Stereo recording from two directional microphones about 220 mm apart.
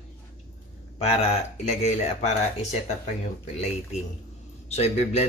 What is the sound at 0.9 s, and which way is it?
Speech, 30° left (ahead or behind).